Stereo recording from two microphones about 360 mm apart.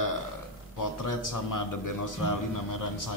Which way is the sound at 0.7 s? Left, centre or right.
Left.